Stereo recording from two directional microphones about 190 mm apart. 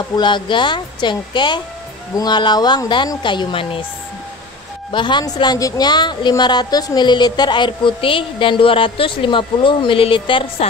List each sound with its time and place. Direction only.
0.1 s a woman's voice: 25° left (ahead or behind)
4.9 s a woman's voice: 25° left (ahead or behind)